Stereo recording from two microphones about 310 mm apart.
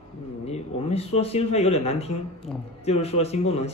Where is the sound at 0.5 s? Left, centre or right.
Centre.